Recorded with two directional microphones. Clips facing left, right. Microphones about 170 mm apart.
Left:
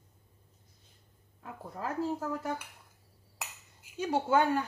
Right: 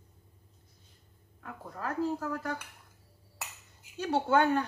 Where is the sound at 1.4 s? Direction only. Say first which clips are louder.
Even; 20° left (ahead or behind).